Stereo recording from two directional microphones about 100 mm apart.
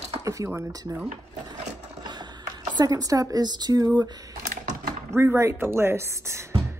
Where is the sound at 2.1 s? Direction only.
45° right (ahead or behind).